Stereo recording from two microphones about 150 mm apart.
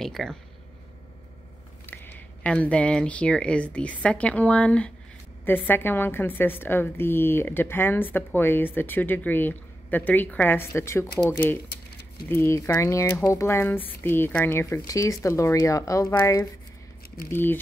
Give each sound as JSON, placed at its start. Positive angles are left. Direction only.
{"t": 0.0, "sound": "speech", "side_deg": 5}
{"t": 1.9, "sound": "a woman's voice", "side_deg": 10}